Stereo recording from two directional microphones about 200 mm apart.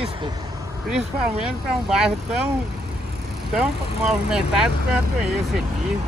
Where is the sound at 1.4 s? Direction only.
5° right (ahead or behind).